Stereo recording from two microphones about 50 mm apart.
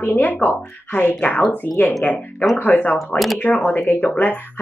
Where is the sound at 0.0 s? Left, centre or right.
Left.